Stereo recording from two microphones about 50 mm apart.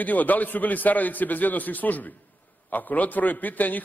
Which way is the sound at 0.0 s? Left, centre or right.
Left.